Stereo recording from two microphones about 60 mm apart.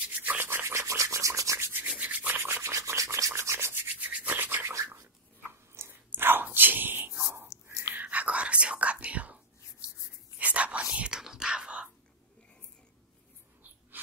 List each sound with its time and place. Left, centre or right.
0.2 s rub: right
0.5 s rub: right
2.0 s rub: right
3.9 s rub: right
4.9 s a sound: right
7.2 s whispering: right
7.9 s whispering: right
14.0 s mechanisms: right